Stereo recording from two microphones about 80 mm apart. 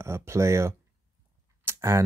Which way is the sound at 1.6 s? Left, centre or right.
Right.